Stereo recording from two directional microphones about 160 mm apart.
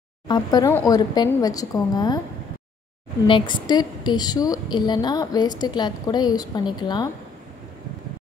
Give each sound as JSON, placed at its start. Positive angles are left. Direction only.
{"t": 0.3, "sound": "a woman's voice", "side_deg": 25}
{"t": 3.3, "sound": "a woman's voice", "side_deg": 30}